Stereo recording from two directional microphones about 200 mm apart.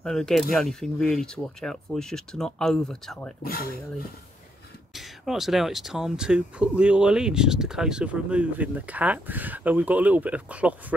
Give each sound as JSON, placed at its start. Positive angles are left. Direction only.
{"t": 0.0, "sound": "speech", "side_deg": 0}
{"t": 3.4, "sound": "speech", "side_deg": 45}
{"t": 4.9, "sound": "speech", "side_deg": 0}